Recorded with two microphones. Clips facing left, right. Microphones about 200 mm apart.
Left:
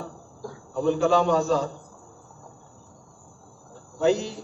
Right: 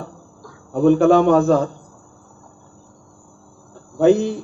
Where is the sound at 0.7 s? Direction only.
55° right (ahead or behind).